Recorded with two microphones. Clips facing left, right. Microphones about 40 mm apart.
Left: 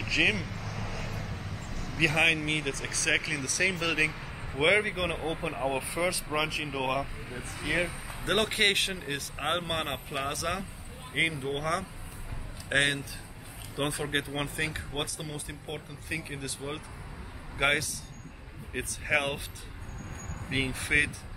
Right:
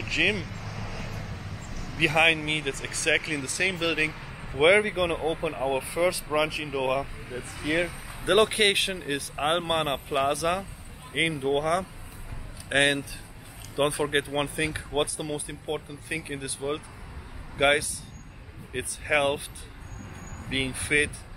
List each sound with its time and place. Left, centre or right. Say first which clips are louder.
0.3 s vehicle: right 2 dB; centre
2.0 s speech: right 3 dB; right
3.7 s speech: right 2 dB; centre
4.2 s a sound: even; centre
4.6 s speech: right 5 dB; centre
20.4 s speech: right 2 dB; centre